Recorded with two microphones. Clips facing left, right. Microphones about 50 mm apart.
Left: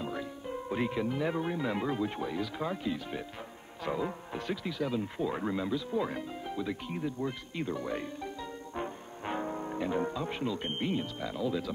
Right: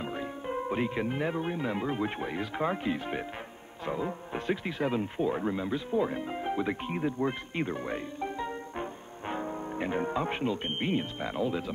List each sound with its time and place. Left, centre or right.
0.0 s music: right
0.9 s speech: right
1.4 s speech: centre
1.9 s speech: right
3.8 s speech: centre
4.3 s speech: right
5.3 s speech: centre
6.3 s speech: right
9.2 s music: centre
9.8 s speech: right